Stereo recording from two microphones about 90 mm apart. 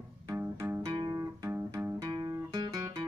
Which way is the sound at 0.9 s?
55° right (ahead or behind).